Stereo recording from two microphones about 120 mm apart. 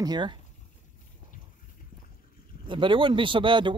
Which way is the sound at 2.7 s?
45° right (ahead or behind).